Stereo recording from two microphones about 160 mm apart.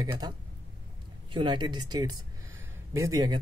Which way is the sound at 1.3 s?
30° right (ahead or behind).